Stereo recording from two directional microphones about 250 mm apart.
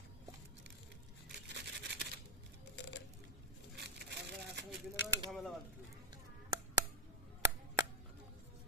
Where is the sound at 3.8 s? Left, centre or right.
Right.